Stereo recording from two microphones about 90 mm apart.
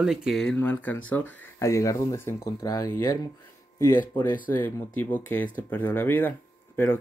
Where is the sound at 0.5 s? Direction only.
20° left (ahead or behind).